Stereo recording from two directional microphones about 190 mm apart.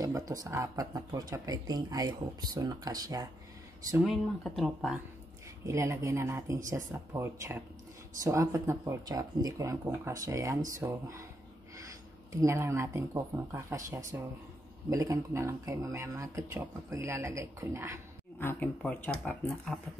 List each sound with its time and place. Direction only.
0.0 s speech: 20° right (ahead or behind)
4.0 s speech: centre (ahead or behind)
5.7 s speech: 15° right (ahead or behind)
12.3 s speech: 15° right (ahead or behind)
18.4 s speech: 10° left (ahead or behind)